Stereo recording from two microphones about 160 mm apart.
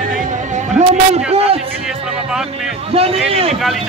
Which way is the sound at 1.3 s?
40° right (ahead or behind).